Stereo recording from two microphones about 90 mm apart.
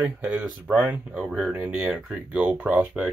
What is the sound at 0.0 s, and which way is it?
Speech, 15° right (ahead or behind).